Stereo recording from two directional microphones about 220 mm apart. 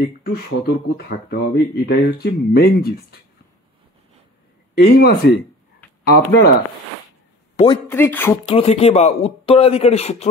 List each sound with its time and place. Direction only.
0.0 s speech: 45° left (ahead or behind)
4.7 s speech: 45° left (ahead or behind)
7.5 s speech: 20° left (ahead or behind)
7.9 s speech: 10° left (ahead or behind)
8.5 s speech: 25° left (ahead or behind)